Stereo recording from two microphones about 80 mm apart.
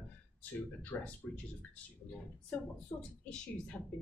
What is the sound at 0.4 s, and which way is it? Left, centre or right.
Speech, left.